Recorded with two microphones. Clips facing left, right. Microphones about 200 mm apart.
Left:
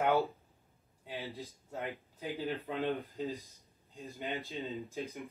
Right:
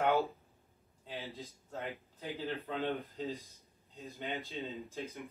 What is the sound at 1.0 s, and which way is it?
Speech, 15° left (ahead or behind).